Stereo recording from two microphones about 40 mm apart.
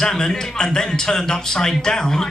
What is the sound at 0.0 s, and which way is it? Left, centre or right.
Speech, centre.